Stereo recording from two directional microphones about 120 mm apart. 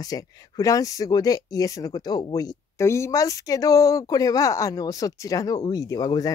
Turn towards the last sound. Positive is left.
turn(degrees=30)  # may be behind; listen again after turning